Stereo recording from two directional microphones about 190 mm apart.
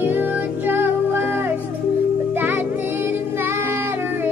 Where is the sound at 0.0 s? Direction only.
10° right (ahead or behind).